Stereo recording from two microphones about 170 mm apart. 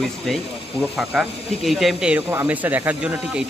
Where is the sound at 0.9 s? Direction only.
Centre (ahead or behind).